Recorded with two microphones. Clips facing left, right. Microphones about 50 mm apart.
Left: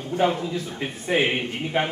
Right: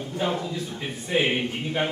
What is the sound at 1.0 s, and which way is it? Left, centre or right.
Speech, left.